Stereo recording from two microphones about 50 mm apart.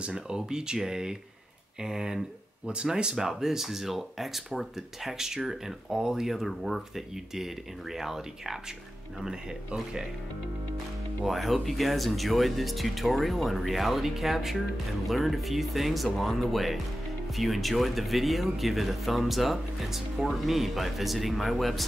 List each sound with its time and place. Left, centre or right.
0.0 s speech: centre
11.2 s speech: centre